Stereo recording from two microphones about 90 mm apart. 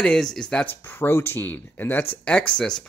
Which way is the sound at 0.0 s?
5° left (ahead or behind).